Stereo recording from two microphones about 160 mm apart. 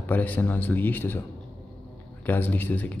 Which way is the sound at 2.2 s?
10° left (ahead or behind).